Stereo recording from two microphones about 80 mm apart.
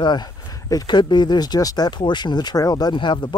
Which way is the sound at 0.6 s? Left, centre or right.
Left.